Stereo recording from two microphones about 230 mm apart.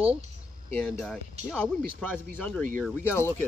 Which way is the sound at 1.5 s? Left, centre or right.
Centre.